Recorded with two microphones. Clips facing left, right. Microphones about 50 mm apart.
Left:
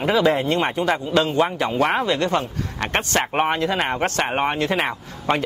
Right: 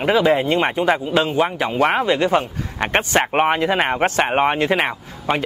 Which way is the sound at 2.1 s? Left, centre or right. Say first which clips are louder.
Right 4 dB; centre.